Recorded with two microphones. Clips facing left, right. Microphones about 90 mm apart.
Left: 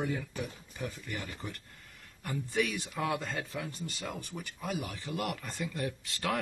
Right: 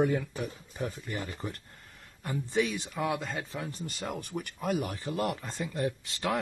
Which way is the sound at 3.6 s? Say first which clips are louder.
Right 2 dB; 35° right (ahead or behind).